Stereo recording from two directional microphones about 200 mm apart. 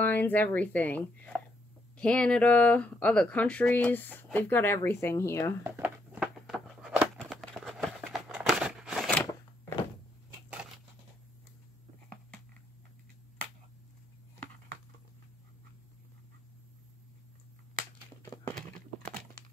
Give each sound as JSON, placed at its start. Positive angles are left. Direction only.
{"t": 0.0, "sound": "speech", "side_deg": 10}
{"t": 5.6, "sound": "a sound", "side_deg": -10}
{"t": 18.2, "sound": "horse", "side_deg": 15}